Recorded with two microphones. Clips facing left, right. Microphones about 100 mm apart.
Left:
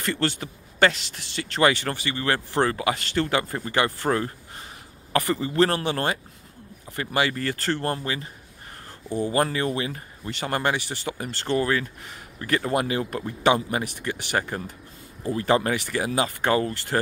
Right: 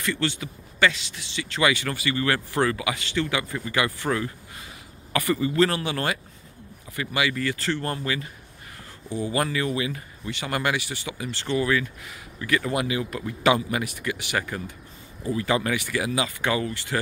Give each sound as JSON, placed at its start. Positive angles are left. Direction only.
{"t": 0.0, "sound": "speech", "side_deg": 40}
{"t": 7.2, "sound": "speech", "side_deg": 40}
{"t": 13.2, "sound": "speech", "side_deg": 30}